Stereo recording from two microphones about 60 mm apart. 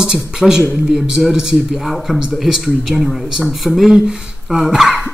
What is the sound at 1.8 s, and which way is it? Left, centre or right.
A man's voice, centre.